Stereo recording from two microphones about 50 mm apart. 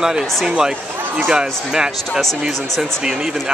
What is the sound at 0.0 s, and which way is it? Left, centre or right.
Speech, centre.